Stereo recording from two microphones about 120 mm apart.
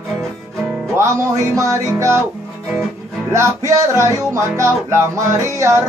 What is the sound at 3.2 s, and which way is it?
Music, 25° right (ahead or behind).